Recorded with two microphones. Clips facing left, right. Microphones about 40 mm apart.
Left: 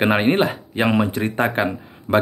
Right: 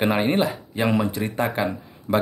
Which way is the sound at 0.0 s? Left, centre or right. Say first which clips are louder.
Left 3 dB; left.